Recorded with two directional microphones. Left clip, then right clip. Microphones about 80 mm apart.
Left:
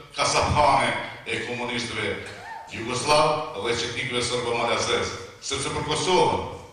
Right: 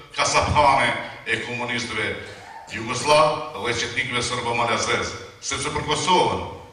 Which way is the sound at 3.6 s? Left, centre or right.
Right.